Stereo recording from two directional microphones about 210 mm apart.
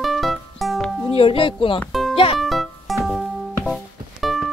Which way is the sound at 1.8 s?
Centre (ahead or behind).